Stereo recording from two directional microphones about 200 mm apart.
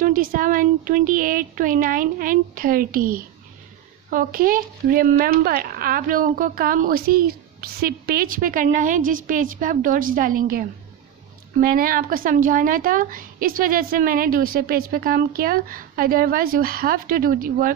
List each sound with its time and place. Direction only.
0.0 s speech: 45° right (ahead or behind)